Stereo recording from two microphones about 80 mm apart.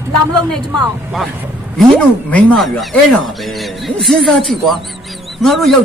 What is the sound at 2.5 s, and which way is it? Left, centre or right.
A man's voice, centre.